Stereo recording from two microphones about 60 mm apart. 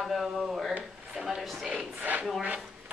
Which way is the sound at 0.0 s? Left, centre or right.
Centre.